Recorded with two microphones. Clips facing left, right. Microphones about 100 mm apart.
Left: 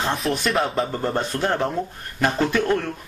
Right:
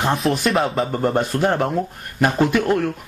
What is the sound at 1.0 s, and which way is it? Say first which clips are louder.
Speech: right 4 dB; 15° right (ahead or behind).